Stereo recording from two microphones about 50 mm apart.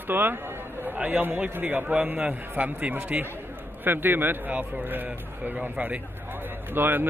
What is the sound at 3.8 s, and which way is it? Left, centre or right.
A man's voice, right.